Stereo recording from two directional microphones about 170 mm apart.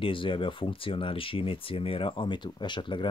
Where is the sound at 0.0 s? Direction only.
30° left (ahead or behind).